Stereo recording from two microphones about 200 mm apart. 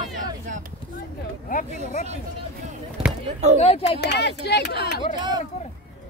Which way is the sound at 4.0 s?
55° left (ahead or behind).